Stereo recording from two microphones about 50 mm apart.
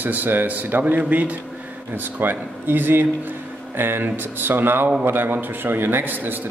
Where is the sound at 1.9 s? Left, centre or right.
Right.